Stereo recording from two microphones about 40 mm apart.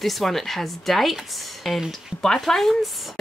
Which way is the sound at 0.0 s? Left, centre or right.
Centre.